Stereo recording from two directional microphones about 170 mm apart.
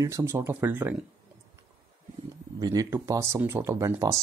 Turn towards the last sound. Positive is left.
turn(degrees=-20)  # may be behind; listen again after turning